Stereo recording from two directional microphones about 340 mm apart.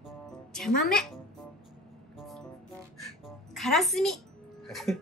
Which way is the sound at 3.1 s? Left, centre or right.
Centre.